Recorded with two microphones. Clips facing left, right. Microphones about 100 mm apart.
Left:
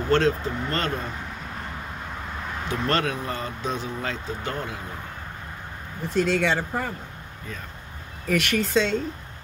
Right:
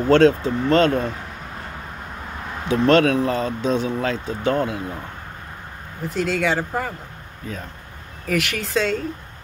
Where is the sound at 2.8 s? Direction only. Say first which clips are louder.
Right 10 dB; 90° right.